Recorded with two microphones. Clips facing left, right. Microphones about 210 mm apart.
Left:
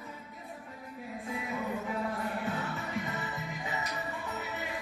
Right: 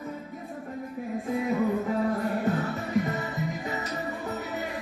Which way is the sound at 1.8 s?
40° right (ahead or behind).